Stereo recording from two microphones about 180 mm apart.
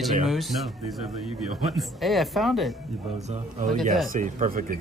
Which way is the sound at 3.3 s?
45° right (ahead or behind).